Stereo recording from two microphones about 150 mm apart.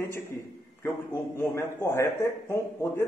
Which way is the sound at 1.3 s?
15° left (ahead or behind).